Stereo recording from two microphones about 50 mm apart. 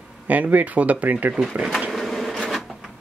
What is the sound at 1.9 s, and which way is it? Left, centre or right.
Bee, centre.